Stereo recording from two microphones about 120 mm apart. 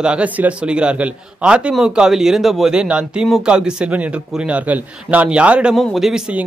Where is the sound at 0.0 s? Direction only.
10° right (ahead or behind).